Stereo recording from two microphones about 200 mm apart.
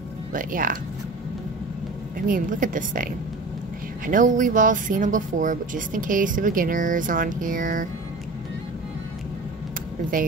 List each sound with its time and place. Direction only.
0.3 s a woman's voice: 40° right (ahead or behind)
2.1 s a woman's voice: 45° right (ahead or behind)